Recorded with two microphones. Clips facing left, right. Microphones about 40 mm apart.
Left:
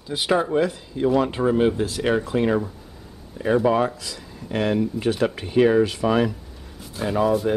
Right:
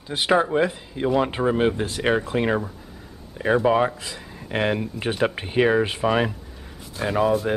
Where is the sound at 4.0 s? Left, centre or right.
Right.